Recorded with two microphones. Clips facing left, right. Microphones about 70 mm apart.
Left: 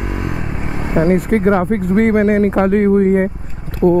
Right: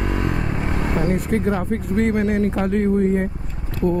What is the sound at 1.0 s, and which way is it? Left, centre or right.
Speech, left.